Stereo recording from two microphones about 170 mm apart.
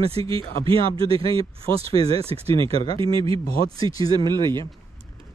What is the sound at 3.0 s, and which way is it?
Speech, 30° right (ahead or behind).